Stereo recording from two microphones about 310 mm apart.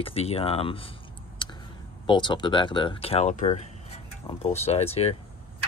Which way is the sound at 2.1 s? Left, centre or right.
Centre.